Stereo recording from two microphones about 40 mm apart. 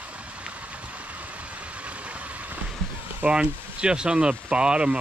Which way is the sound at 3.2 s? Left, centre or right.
Right.